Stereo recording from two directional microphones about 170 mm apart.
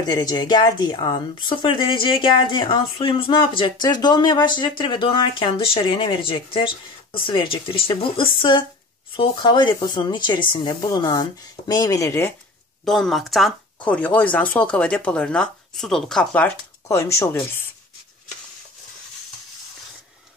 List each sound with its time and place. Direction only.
0.0 s speech: 25° left (ahead or behind)
12.8 s speech: centre (ahead or behind)